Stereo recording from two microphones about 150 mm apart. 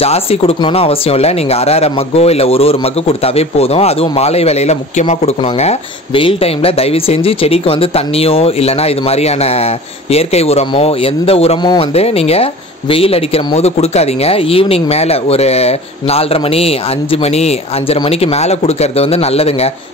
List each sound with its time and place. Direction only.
0.0 s speech: 40° left (ahead or behind)
11.6 s speech: 30° left (ahead or behind)
11.9 s speech: 45° left (ahead or behind)